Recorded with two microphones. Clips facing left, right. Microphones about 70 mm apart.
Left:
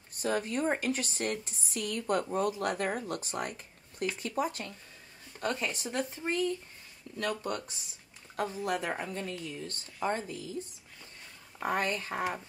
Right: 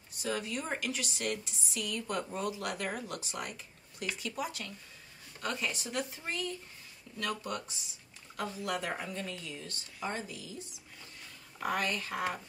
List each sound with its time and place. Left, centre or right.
0.1 s a woman's voice: left
11.6 s a woman's voice: left